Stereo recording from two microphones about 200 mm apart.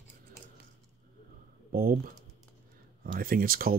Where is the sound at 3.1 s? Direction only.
45° right (ahead or behind).